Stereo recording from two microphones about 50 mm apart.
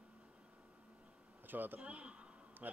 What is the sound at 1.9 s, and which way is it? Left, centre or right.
Speech, right.